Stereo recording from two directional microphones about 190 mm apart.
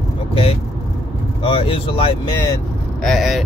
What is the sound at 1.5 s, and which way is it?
Speech, 30° left (ahead or behind).